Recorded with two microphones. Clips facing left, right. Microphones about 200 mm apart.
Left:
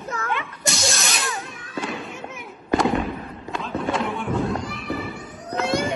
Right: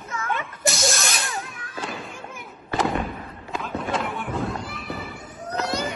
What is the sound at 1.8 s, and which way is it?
Fireworks, centre (ahead or behind).